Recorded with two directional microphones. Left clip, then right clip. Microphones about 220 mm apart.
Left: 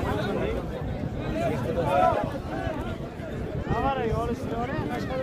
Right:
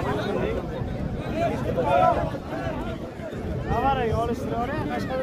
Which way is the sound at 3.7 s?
35° right (ahead or behind).